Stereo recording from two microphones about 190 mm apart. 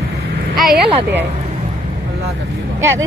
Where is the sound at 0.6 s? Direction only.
Centre (ahead or behind).